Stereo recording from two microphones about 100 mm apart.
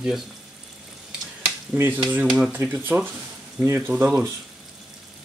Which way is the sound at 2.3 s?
10° right (ahead or behind).